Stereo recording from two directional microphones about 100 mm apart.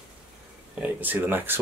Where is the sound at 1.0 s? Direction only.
20° right (ahead or behind).